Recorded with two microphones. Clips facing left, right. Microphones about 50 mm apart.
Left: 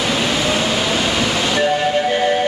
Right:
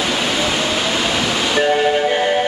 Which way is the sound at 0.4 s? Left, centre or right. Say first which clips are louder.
Left 1 dB; centre.